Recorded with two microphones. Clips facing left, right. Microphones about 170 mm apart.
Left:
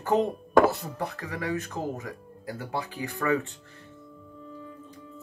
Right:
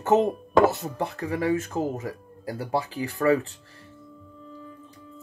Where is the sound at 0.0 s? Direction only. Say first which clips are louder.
Right 4 dB; 25° right (ahead or behind).